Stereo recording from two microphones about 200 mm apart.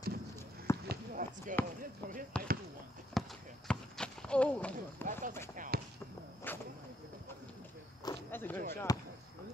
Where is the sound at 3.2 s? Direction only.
Centre (ahead or behind).